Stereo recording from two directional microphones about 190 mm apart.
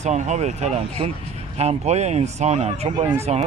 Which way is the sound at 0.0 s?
35° right (ahead or behind).